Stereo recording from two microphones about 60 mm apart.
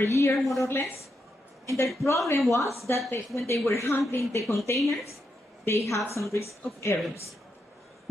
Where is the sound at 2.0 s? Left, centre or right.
Left.